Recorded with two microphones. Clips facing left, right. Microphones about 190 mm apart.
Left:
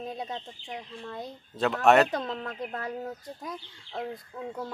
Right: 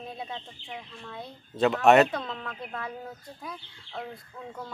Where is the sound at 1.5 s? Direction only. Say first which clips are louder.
Right 4 dB; centre (ahead or behind).